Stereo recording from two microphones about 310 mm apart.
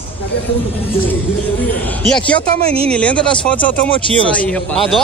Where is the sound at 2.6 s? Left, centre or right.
Centre.